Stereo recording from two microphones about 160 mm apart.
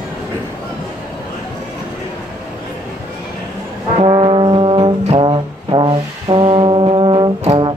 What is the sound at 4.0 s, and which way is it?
Brass instrument, 35° right (ahead or behind).